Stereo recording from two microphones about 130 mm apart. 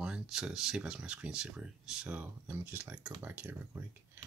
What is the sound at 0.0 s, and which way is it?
Speech, 5° right (ahead or behind).